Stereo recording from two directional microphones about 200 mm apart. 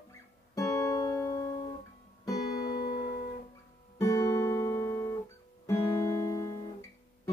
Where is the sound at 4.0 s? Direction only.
15° left (ahead or behind).